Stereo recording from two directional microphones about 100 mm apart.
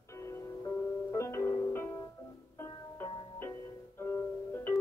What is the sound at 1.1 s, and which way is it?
Music, 30° left (ahead or behind).